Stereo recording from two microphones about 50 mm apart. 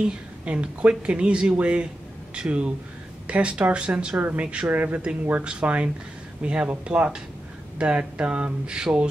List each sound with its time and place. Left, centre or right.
0.0 s speech: right
5.4 s speech: right